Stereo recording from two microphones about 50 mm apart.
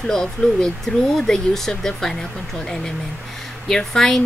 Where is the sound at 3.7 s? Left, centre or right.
Centre.